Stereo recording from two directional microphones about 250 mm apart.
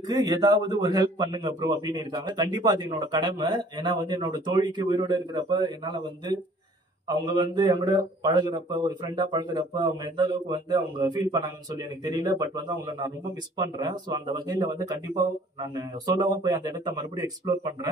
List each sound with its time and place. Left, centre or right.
0.1 s a man's voice: centre
15.7 s a man's voice: centre